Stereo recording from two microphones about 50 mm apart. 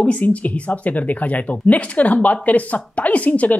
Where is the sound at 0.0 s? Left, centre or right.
Left.